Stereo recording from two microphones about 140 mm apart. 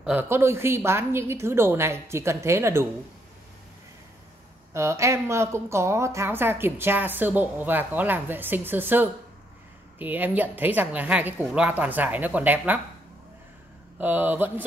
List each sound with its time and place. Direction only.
0.0 s a woman's voice: 15° right (ahead or behind)
4.7 s a woman's voice: 20° right (ahead or behind)
13.9 s a woman's voice: 15° right (ahead or behind)